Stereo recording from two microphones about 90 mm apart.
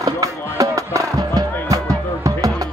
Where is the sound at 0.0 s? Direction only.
40° right (ahead or behind).